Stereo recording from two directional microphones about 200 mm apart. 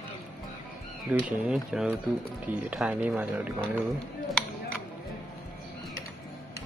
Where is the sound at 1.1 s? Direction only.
5° right (ahead or behind).